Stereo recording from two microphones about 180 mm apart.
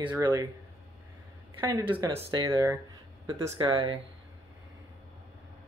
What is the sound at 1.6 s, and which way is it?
Speech, 15° right (ahead or behind).